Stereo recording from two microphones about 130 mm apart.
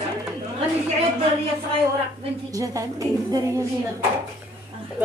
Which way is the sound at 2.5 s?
25° right (ahead or behind).